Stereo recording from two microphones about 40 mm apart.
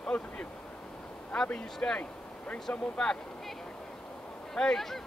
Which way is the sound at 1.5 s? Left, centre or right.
Left.